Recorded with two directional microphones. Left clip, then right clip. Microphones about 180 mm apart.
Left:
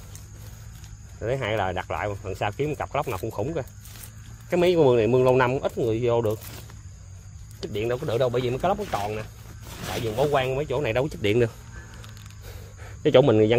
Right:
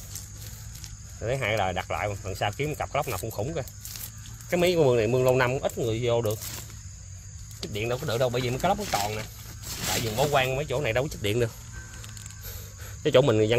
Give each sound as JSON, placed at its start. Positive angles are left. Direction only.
{"t": 1.2, "sound": "speech", "side_deg": 45}
{"t": 7.6, "sound": "speech", "side_deg": 50}
{"t": 13.0, "sound": "speech", "side_deg": 30}